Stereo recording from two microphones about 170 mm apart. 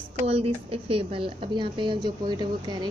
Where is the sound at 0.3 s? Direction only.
35° right (ahead or behind).